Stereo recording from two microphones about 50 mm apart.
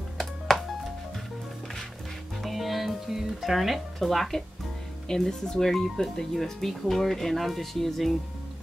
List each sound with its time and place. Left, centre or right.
0.2 s music: centre
2.4 s music: centre
5.0 s speech: centre